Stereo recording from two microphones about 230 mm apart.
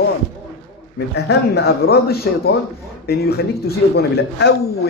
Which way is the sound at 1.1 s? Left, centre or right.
Left.